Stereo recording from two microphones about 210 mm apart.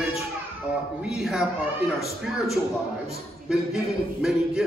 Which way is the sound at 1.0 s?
Centre (ahead or behind).